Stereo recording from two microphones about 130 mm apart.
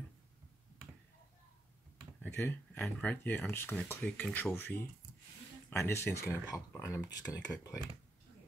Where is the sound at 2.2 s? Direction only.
15° left (ahead or behind).